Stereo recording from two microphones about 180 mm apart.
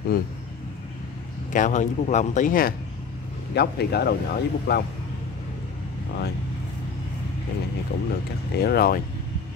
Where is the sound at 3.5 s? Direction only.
65° left (ahead or behind).